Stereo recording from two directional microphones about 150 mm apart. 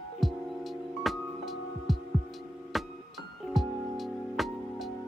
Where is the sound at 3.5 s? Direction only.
Centre (ahead or behind).